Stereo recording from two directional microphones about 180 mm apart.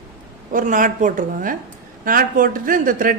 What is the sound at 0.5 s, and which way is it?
Speech, 45° right (ahead or behind).